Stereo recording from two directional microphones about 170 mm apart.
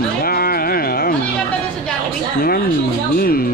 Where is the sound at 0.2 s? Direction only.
60° left (ahead or behind).